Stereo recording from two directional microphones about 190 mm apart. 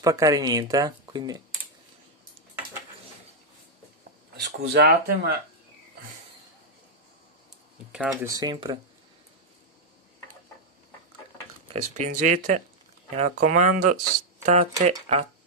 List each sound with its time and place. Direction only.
0.0 s speech: 20° right (ahead or behind)
4.6 s speech: 55° right (ahead or behind)
7.9 s speech: 5° right (ahead or behind)
11.7 s speech: 40° right (ahead or behind)